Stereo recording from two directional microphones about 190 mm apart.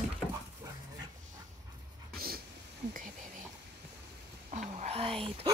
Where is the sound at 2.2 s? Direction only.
50° right (ahead or behind).